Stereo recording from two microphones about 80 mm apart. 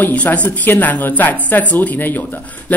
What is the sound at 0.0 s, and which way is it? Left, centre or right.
A man's voice, centre.